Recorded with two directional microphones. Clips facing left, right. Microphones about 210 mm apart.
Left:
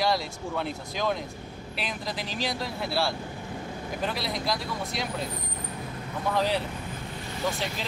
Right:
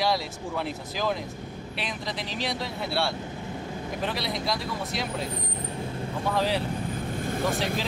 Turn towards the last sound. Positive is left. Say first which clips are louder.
# right 4 dB
turn(degrees=-50)  # may be behind; listen again after turning